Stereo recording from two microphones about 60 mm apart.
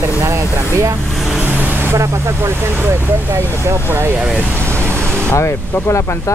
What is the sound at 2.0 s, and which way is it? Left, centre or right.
Speech, right.